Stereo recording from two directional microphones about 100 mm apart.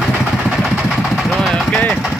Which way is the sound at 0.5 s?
Centre (ahead or behind).